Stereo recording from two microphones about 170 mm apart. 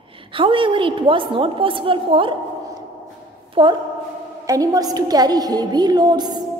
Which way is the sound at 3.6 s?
30° right (ahead or behind).